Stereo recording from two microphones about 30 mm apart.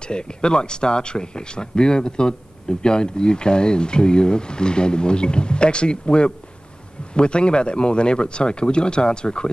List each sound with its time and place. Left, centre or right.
0.0 s speech: left